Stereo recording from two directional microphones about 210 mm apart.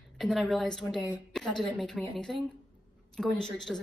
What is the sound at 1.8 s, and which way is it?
A woman's voice, 5° left (ahead or behind).